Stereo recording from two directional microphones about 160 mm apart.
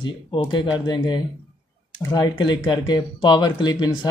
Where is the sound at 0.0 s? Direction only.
30° left (ahead or behind).